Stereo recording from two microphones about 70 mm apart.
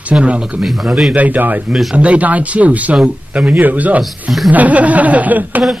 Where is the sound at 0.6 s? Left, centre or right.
Centre.